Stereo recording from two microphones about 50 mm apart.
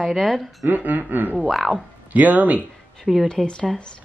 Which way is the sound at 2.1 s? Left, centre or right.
Right.